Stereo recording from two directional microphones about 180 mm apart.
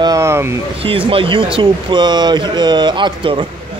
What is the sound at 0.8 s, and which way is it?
Speech, 30° right (ahead or behind).